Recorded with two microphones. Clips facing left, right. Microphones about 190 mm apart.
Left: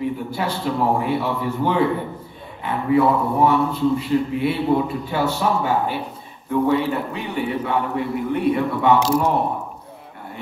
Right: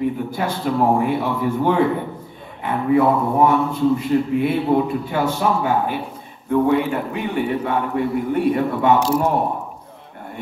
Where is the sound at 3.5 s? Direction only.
50° right (ahead or behind).